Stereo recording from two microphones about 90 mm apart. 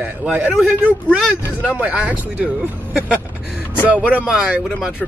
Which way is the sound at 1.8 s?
15° right (ahead or behind).